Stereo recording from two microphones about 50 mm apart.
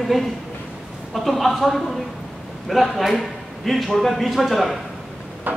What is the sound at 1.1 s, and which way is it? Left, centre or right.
A man's voice, centre.